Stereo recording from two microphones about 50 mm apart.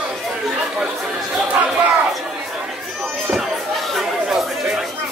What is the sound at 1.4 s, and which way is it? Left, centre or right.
Chatter, right.